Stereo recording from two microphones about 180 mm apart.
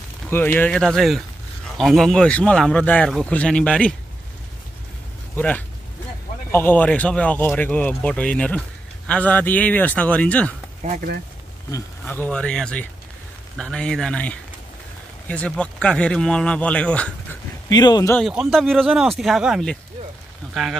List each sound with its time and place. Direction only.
0.3 s speech: 10° left (ahead or behind)
5.3 s speech: 10° left (ahead or behind)
10.8 s speech: 35° right (ahead or behind)
12.0 s speech: 10° left (ahead or behind)
17.6 s speech: 20° left (ahead or behind)
18.5 s speech: centre (ahead or behind)